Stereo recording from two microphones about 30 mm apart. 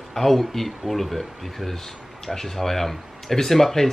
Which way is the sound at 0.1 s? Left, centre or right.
Centre.